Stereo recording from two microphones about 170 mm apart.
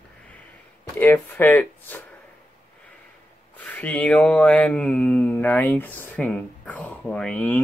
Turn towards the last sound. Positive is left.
turn(degrees=5)  # may be behind; listen again after turning